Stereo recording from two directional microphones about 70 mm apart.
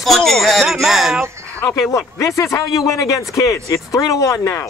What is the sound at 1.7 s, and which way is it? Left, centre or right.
Speech, left.